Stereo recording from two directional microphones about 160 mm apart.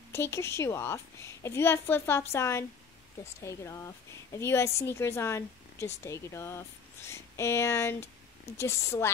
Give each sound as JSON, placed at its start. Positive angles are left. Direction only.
{"t": 0.1, "sound": "a woman's voice", "side_deg": 15}